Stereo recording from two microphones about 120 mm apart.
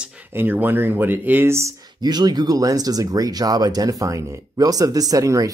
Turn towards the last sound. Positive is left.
turn(degrees=-30)  # may be behind; listen again after turning